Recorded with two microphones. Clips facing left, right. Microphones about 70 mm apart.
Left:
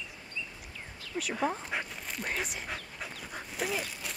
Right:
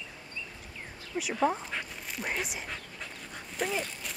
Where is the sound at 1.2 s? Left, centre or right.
Centre.